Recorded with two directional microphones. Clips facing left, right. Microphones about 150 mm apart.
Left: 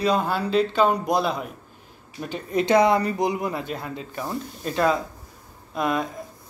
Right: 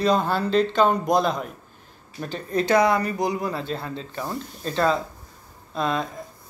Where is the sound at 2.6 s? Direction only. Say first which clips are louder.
Left 1 dB; 25° left (ahead or behind).